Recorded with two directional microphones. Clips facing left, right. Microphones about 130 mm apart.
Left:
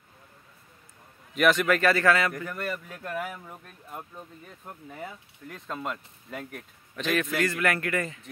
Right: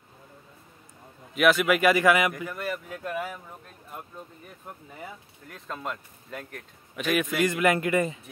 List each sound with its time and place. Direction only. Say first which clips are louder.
1.3 s speech: right 1 dB; 5° right (ahead or behind)
4.6 s speech: left 2 dB; centre (ahead or behind)
7.0 s a man's voice: right 2 dB; 10° right (ahead or behind)